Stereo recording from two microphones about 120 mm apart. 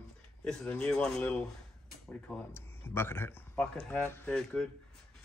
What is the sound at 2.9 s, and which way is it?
A man's voice, 20° left (ahead or behind).